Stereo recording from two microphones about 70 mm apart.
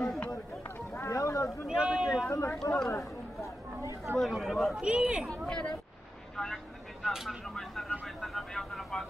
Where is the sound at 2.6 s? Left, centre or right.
Left.